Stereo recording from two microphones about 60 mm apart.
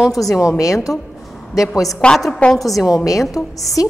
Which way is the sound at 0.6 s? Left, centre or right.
Left.